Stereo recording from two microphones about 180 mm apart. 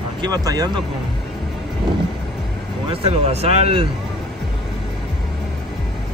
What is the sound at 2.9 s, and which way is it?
Speech, 35° right (ahead or behind).